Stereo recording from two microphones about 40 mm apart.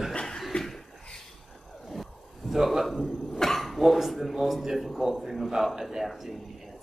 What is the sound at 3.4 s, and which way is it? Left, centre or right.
Dog, centre.